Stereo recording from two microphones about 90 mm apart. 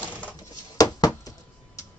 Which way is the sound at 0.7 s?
40° left (ahead or behind).